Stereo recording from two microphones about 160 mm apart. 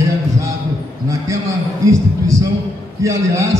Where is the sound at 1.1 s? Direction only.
20° right (ahead or behind).